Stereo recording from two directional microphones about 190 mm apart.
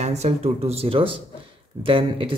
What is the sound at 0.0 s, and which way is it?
Speech, 35° right (ahead or behind).